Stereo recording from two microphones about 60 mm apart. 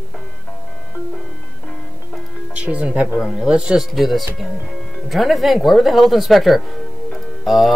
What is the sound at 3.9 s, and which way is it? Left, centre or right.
Speech, centre.